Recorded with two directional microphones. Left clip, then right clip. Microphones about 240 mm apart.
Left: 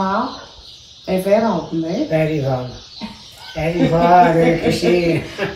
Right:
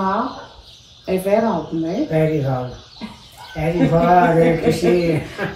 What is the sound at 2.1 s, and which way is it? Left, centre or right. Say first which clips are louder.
Speech: left 1 dB; centre.